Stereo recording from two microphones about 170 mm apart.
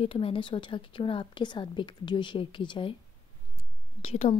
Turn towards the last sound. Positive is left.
turn(degrees=35)  # may be behind; listen again after turning